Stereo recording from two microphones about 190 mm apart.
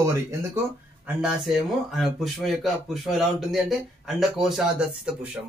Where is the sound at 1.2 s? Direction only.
Centre (ahead or behind).